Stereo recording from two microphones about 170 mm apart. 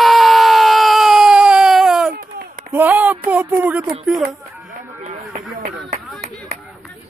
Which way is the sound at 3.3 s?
10° right (ahead or behind).